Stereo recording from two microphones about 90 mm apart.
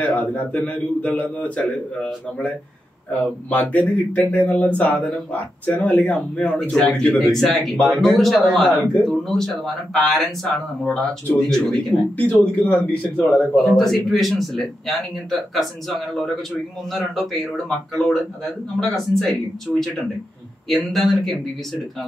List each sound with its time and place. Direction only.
0.0 s a man's voice: 20° left (ahead or behind); by 10.3 s centre (ahead or behind)
10.4 s a man's voice: 10° left (ahead or behind)
12.2 s a man's voice: 20° left (ahead or behind)
13.6 s a man's voice: centre (ahead or behind)
16.9 s a man's voice: centre (ahead or behind)
20.6 s a man's voice: centre (ahead or behind)